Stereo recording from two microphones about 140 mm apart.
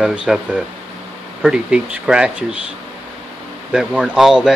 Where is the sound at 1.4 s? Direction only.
5° right (ahead or behind).